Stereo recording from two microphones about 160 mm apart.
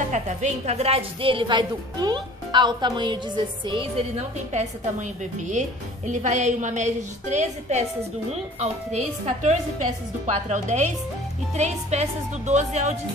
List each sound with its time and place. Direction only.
0.1 s a woman's voice: 45° right (ahead or behind); by 4.0 s 30° right (ahead or behind)
4.5 s a woman's voice: 45° right (ahead or behind)